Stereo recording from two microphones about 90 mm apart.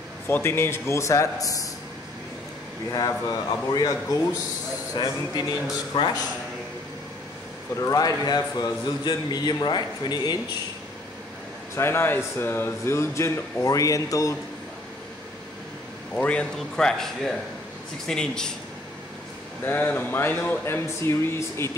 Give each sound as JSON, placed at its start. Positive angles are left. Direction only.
{"t": 0.3, "sound": "a man's voice", "side_deg": 25}
{"t": 2.9, "sound": "a man's voice", "side_deg": 45}
{"t": 4.9, "sound": "a man's voice", "side_deg": 50}
{"t": 7.8, "sound": "a man's voice", "side_deg": 40}
{"t": 11.7, "sound": "a man's voice", "side_deg": 25}
{"t": 16.2, "sound": "speech", "side_deg": 15}
{"t": 19.6, "sound": "speech", "side_deg": 25}